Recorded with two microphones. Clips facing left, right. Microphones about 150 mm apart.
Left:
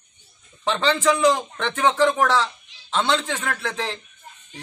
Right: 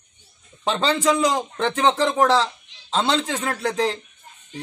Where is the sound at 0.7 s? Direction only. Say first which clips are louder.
Even; 35° right (ahead or behind).